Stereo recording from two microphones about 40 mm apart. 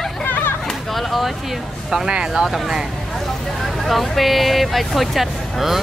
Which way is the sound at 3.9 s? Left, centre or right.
Centre.